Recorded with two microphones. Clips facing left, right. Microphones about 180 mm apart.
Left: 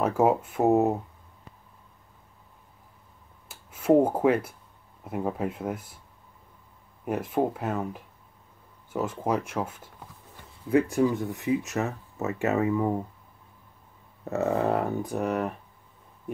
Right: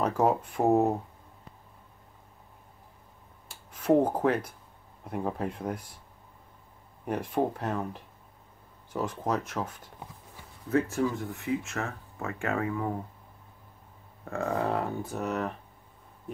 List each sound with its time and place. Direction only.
0.0 s speech: 10° left (ahead or behind)
3.4 s speech: 10° left (ahead or behind)
7.1 s speech: 5° left (ahead or behind); by 12.9 s 20° left (ahead or behind)
14.2 s speech: 20° left (ahead or behind)